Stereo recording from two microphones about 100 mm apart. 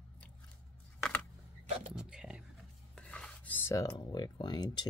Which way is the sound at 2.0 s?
5° right (ahead or behind).